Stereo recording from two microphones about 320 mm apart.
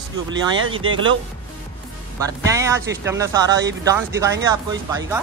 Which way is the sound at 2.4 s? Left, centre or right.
Centre.